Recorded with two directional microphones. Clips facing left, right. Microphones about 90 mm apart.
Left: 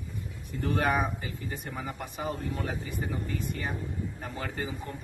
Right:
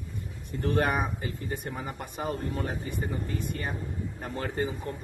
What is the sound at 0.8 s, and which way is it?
Speech, 50° right (ahead or behind).